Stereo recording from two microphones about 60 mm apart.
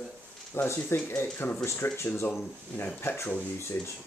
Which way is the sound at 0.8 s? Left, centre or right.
Left.